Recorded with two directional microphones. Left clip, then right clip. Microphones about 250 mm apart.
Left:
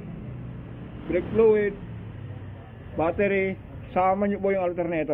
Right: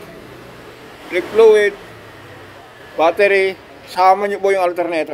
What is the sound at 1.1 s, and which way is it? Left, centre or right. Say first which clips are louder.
Speech: right 10 dB; centre.